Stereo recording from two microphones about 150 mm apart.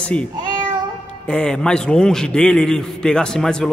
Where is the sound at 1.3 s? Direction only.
5° left (ahead or behind).